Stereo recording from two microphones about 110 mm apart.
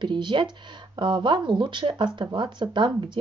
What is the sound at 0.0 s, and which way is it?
Speech, 45° right (ahead or behind).